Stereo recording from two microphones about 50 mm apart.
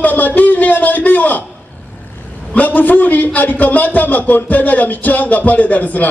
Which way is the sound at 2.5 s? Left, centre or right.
Left.